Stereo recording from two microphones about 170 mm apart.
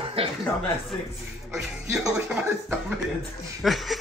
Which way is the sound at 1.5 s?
Centre (ahead or behind).